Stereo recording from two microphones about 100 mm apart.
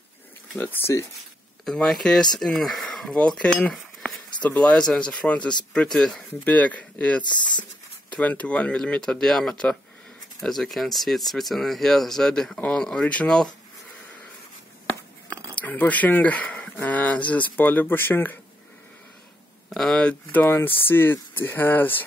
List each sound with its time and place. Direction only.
0.6 s speech: 20° left (ahead or behind)
1.6 s speech: 5° left (ahead or behind)
7.2 s speech: 50° left (ahead or behind)
8.2 s speech: 15° left (ahead or behind)
15.5 s speech: 15° left (ahead or behind)
19.7 s speech: 5° left (ahead or behind)